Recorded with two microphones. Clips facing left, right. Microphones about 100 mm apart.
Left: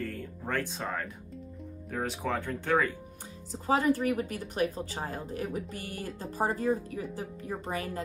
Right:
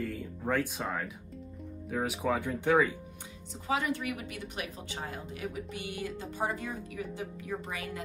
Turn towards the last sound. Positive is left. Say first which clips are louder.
# left 3 dB
turn(degrees=40)  # may be behind; listen again after turning